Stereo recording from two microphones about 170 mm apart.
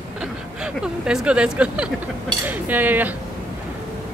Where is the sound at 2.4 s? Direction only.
10° right (ahead or behind).